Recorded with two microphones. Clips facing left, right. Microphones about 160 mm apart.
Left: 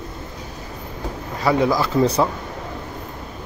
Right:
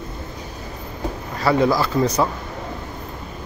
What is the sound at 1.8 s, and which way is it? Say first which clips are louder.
Speech: left 2 dB; 25° left (ahead or behind).